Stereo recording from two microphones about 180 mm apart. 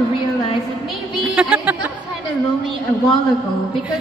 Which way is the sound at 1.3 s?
10° right (ahead or behind).